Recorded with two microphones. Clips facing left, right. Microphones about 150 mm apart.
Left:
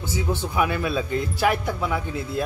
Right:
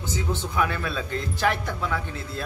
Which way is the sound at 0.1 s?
10° left (ahead or behind).